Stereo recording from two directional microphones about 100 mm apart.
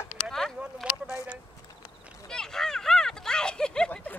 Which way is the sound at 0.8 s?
5° right (ahead or behind).